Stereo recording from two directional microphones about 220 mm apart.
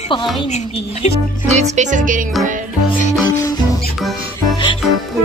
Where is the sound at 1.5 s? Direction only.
30° right (ahead or behind).